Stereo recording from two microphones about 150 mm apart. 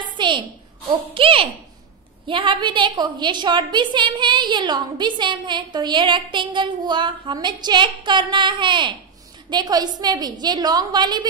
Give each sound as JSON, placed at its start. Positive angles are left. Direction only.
{"t": 0.2, "sound": "a woman's voice", "side_deg": -35}